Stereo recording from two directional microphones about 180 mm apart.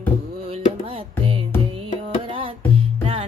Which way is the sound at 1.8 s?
30° right (ahead or behind).